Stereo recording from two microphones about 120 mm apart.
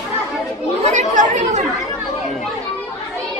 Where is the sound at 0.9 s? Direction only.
85° right.